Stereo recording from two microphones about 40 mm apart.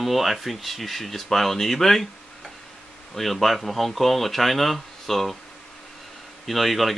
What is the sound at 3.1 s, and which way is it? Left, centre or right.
Speech, centre.